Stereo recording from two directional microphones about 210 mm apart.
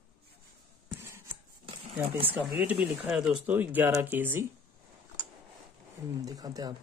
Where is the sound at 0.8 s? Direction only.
10° right (ahead or behind).